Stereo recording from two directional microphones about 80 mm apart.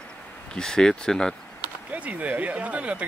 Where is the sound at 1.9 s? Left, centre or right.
Centre.